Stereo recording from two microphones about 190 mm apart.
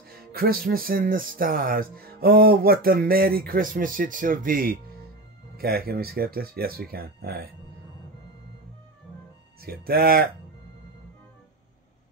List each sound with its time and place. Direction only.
0.1 s speech: 55° right (ahead or behind)
9.6 s speech: 55° right (ahead or behind)